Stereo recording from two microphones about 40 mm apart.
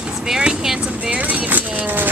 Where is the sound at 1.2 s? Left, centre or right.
Right.